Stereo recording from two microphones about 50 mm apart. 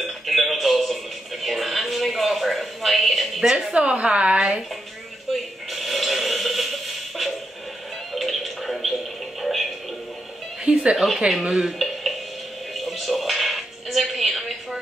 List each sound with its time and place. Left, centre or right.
0.0 s music: centre
1.4 s a sound: centre
3.7 s a woman's voice: right
5.3 s a sound: centre
8.1 s music: centre
10.6 s cat: right
11.6 s music: centre